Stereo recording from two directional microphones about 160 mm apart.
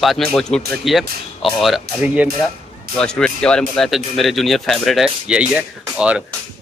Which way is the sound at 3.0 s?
5° left (ahead or behind).